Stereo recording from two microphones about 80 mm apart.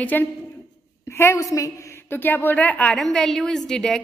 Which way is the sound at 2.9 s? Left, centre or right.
Centre.